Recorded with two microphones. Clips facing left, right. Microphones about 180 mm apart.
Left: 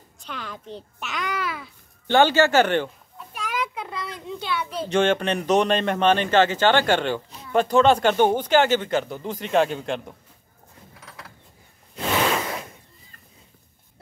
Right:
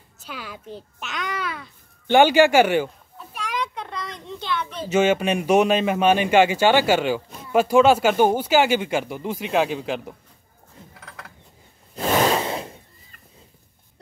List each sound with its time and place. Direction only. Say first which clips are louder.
0.2 s a child's voice: even; 5° right (ahead or behind)
2.0 s speech: right 3 dB; 15° right (ahead or behind)
3.3 s children playing: even; 5° left (ahead or behind)
4.8 s speech: right 2 dB; 5° right (ahead or behind)
12.1 s a sound: right 3 dB; 35° right (ahead or behind)